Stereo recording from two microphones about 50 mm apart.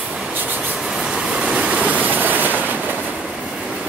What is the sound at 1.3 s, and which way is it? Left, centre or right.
Train, right.